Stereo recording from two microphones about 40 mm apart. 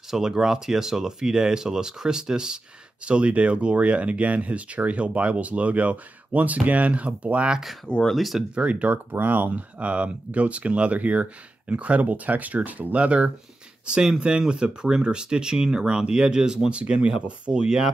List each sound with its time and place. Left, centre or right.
0.1 s speech: centre
3.1 s speech: right
8.1 s speech: centre
8.5 s speech: right
9.2 s speech: right
13.8 s speech: centre